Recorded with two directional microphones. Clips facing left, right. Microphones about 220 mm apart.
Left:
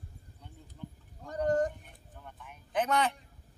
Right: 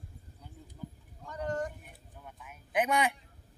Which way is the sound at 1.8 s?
5° right (ahead or behind).